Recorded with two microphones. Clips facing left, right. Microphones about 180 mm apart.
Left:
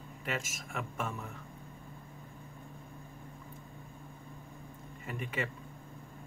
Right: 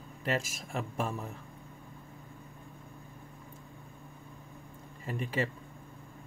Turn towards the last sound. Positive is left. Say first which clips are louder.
# right 4 dB
turn(degrees=-30)  # may be behind; listen again after turning